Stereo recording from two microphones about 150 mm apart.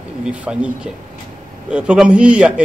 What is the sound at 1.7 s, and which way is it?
Speech, 5° right (ahead or behind).